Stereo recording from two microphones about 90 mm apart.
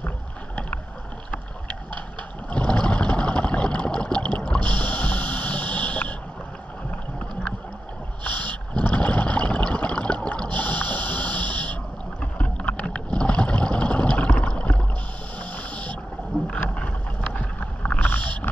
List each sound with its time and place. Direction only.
2.5 s water: 10° left (ahead or behind)
4.4 s music: 15° left (ahead or behind)
8.7 s water: 15° left (ahead or behind)
15.3 s a sound: 15° left (ahead or behind)
16.4 s boat: 15° left (ahead or behind)